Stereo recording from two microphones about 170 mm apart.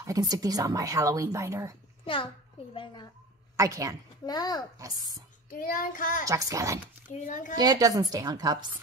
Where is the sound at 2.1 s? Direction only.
30° left (ahead or behind).